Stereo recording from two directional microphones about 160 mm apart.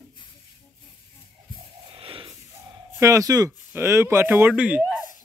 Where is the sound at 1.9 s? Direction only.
35° right (ahead or behind).